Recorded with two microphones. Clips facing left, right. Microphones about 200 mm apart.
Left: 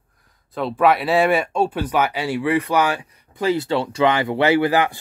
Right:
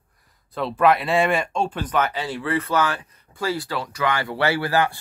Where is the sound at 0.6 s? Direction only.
Centre (ahead or behind).